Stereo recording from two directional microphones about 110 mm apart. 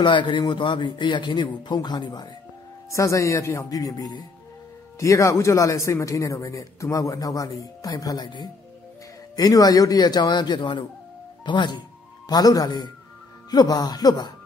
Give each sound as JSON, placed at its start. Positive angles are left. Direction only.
{"t": 0.0, "sound": "a man's voice", "side_deg": 50}
{"t": 2.9, "sound": "a man's voice", "side_deg": 30}